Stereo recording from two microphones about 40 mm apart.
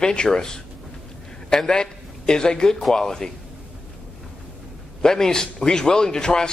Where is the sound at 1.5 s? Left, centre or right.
Centre.